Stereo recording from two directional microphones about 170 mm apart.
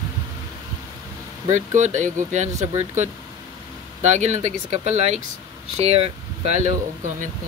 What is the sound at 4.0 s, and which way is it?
Speech, 40° right (ahead or behind).